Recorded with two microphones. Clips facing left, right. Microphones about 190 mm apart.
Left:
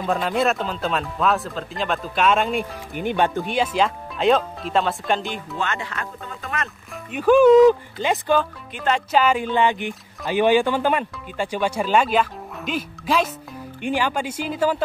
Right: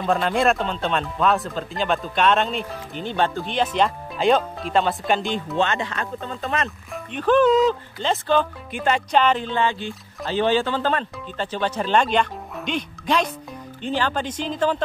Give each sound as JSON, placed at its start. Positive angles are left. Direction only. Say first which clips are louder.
{"t": 0.0, "sound": "speech", "louder": "right 1 dB", "side_deg": 0}
{"t": 5.6, "sound": "speech", "louder": "right 4 dB", "side_deg": -25}
{"t": 6.9, "sound": "speech", "louder": "left 4 dB", "side_deg": 10}